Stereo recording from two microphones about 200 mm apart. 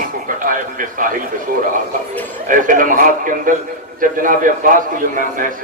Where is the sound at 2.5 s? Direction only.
40° right (ahead or behind).